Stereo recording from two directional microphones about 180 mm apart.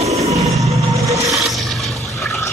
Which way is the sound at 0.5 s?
15° right (ahead or behind).